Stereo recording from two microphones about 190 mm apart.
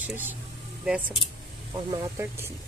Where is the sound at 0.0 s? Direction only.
10° right (ahead or behind).